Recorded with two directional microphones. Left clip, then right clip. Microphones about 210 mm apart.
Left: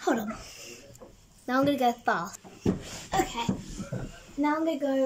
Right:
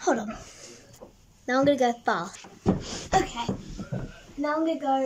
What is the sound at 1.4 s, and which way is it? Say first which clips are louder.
Speech: right 3 dB; 5° left (ahead or behind).